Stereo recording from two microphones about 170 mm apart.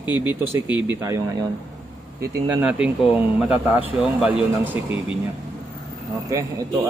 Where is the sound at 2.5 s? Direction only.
5° right (ahead or behind).